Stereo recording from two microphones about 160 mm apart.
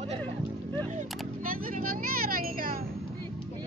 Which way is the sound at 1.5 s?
60° right (ahead or behind).